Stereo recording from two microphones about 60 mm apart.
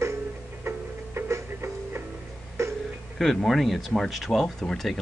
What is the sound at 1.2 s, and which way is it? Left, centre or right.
Music, right.